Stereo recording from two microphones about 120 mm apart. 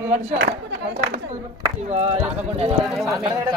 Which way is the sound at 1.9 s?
60° right (ahead or behind).